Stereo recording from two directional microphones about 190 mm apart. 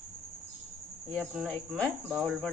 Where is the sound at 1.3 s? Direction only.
Centre (ahead or behind).